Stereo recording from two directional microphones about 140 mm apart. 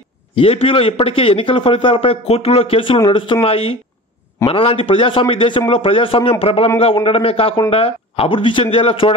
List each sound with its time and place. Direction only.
0.4 s a man's voice: 40° left (ahead or behind)